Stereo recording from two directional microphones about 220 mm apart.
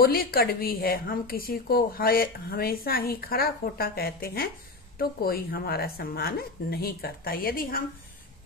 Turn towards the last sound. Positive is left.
turn(degrees=40)  # may be behind; listen again after turning